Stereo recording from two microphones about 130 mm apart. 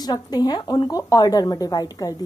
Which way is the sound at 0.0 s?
30° left (ahead or behind).